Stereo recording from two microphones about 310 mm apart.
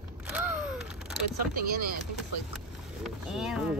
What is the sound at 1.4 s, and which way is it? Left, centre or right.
Speech, right.